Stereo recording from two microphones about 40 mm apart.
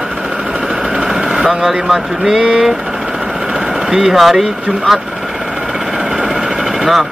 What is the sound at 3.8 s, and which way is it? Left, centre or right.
Speech, centre.